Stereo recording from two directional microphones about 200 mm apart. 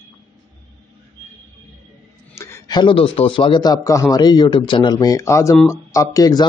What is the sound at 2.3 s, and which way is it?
A man's voice, 15° left (ahead or behind).